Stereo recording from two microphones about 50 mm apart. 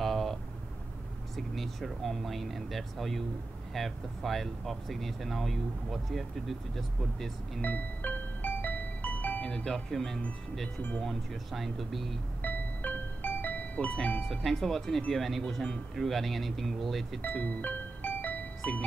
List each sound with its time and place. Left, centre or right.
0.0 s vehicle: centre
1.3 s speech: centre
7.6 s music: left
9.8 s speech: centre
12.4 s music: left
14.2 s speech: centre
17.4 s music: left